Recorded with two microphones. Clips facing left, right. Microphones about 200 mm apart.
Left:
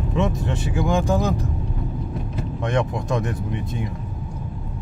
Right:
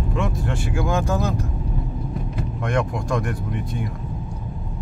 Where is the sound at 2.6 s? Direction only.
20° left (ahead or behind).